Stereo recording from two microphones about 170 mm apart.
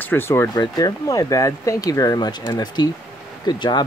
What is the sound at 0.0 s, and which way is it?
Speech, 15° left (ahead or behind).